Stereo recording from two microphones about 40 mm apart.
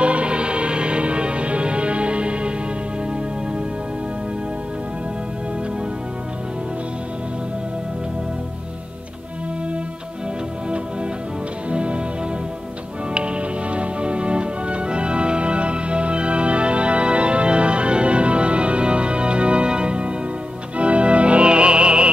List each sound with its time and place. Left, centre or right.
0.0 s music: right
11.7 s music: right
13.1 s music: right